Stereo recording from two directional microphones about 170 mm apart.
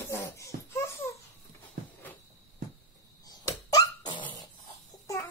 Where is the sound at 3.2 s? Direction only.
20° left (ahead or behind).